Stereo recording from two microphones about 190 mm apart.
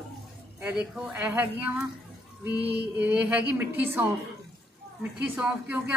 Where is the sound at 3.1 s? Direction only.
5° right (ahead or behind).